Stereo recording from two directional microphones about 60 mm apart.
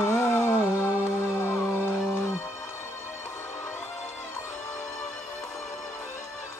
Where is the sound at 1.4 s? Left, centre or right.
Left.